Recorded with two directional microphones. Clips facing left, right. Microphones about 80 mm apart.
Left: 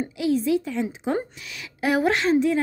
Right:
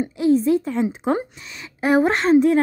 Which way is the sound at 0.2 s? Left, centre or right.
Right.